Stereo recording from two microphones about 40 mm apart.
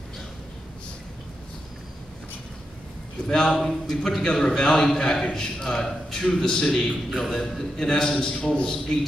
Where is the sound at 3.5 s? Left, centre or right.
Centre.